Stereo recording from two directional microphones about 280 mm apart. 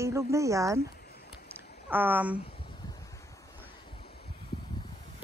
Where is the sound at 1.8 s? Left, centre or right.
Centre.